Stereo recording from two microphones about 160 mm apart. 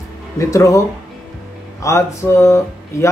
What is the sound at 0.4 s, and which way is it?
Speech, 20° left (ahead or behind).